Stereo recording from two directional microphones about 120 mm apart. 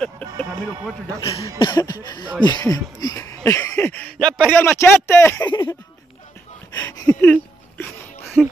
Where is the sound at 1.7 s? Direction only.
30° left (ahead or behind).